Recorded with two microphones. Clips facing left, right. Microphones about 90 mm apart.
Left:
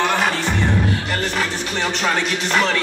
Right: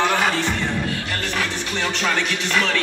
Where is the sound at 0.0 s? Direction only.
10° left (ahead or behind).